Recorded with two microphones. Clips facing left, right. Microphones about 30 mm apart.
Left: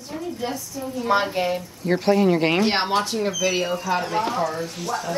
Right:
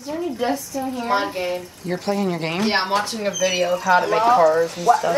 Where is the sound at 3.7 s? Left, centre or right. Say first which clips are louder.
Right 6 dB; right.